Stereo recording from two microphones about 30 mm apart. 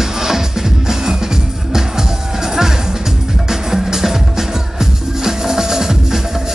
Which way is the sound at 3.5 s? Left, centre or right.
Centre.